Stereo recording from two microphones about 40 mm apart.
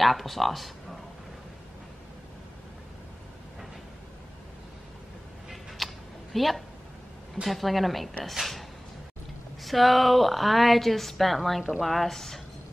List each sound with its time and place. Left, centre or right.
0.0 s speech: centre
5.5 s a sound: centre
6.3 s a woman's voice: centre